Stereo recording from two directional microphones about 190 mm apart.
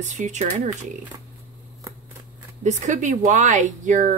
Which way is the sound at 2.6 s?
40° right (ahead or behind).